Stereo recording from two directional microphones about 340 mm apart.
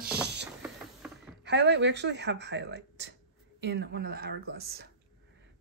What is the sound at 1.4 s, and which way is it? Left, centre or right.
A woman's voice, right.